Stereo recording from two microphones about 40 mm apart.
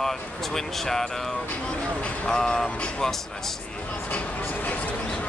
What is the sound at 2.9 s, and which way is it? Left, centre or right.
Speech, centre.